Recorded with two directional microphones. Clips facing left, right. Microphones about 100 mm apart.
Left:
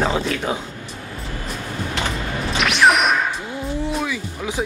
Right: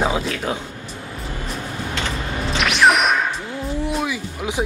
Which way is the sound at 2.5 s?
Centre (ahead or behind).